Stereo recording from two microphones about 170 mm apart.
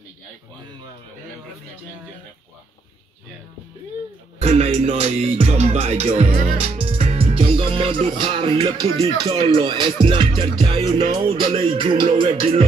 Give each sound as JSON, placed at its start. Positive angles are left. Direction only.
{"t": 4.4, "sound": "music", "side_deg": -40}